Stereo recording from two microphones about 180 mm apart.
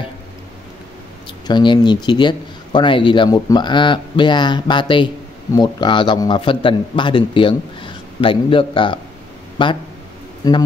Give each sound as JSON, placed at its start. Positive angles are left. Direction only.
{"t": 1.5, "sound": "speech", "side_deg": 25}